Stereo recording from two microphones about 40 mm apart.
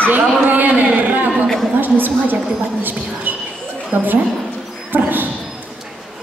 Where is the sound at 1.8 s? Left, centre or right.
Right.